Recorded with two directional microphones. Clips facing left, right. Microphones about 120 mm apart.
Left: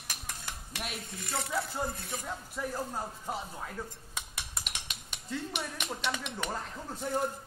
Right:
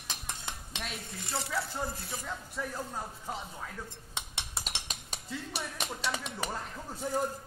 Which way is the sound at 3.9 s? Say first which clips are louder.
Right 1 dB; 25° right (ahead or behind).